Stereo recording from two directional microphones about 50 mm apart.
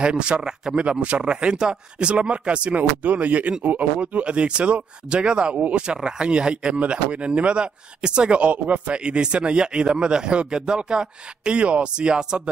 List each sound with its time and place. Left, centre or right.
0.0 s a man's voice: right